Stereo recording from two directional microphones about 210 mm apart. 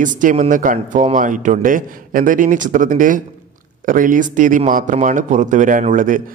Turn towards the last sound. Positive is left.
turn(degrees=-40)  # may be behind; listen again after turning